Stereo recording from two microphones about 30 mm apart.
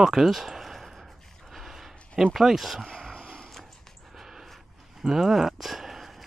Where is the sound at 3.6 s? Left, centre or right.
Centre.